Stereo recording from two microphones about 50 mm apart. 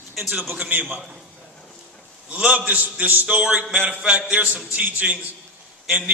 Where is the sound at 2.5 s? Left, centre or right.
Right.